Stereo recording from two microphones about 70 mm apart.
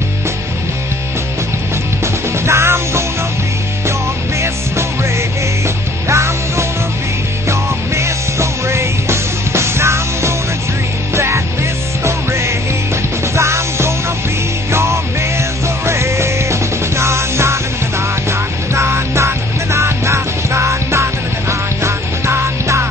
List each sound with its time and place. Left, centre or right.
2.4 s music: right
6.0 s music: right
18.8 s music: right